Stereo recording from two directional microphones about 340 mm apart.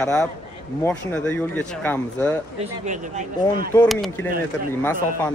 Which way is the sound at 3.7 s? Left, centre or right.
Centre.